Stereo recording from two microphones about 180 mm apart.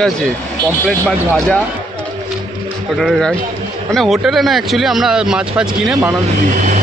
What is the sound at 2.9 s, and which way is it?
Speech, centre (ahead or behind).